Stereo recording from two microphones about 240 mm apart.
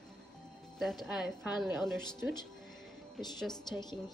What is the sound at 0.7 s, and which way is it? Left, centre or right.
A woman's voice, centre.